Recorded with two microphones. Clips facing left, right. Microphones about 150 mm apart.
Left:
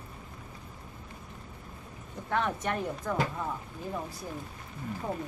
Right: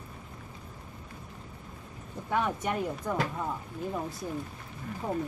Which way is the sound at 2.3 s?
10° right (ahead or behind).